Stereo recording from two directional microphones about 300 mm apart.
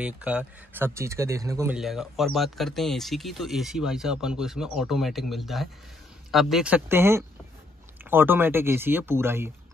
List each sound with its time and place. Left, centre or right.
0.0 s speech: centre